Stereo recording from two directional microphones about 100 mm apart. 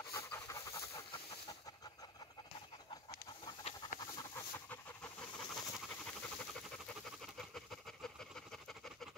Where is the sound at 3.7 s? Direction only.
90° left.